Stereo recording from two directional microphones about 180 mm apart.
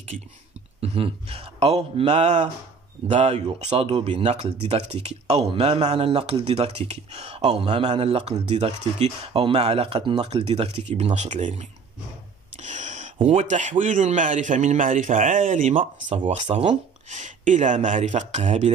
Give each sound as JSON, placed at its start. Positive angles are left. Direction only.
{"t": 0.7, "sound": "speech", "side_deg": -35}
{"t": 12.5, "sound": "a sound", "side_deg": -45}
{"t": 13.3, "sound": "a man's voice", "side_deg": -45}